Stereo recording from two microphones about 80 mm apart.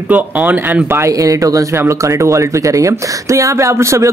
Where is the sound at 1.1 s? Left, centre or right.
Right.